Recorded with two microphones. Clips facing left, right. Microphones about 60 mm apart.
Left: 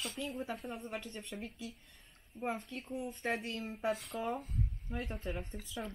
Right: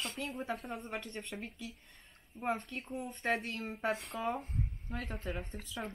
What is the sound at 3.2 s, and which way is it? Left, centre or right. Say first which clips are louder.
A woman's voice: right 4 dB; right.